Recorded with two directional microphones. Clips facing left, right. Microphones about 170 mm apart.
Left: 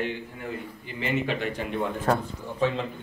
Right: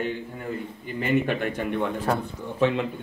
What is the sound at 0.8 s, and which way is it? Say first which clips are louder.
Speech: right 4 dB; 50° right (ahead or behind).